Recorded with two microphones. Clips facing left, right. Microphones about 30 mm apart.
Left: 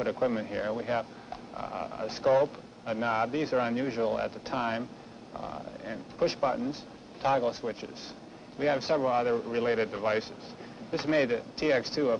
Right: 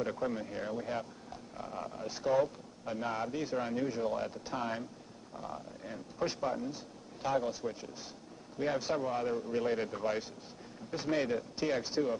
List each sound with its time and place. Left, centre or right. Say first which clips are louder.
0.0 s speech: left 6 dB; left